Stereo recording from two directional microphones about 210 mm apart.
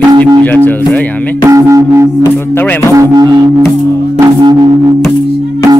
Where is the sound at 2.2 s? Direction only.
10° left (ahead or behind).